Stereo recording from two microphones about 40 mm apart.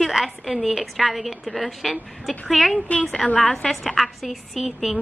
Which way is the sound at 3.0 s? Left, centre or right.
Centre.